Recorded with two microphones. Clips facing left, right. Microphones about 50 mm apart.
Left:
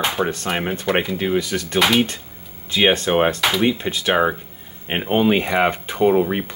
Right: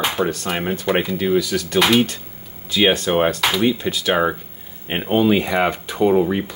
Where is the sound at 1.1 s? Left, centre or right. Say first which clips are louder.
Right 2 dB; left.